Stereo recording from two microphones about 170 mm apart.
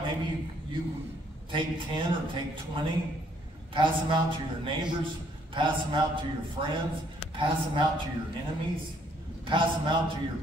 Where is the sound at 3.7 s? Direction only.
30° right (ahead or behind).